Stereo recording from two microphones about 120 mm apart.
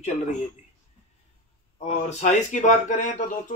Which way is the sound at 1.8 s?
70° left (ahead or behind).